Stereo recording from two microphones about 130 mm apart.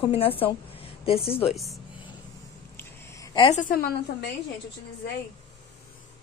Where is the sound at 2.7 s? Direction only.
25° left (ahead or behind).